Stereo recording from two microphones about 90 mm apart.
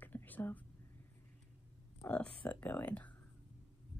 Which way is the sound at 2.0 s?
15° left (ahead or behind).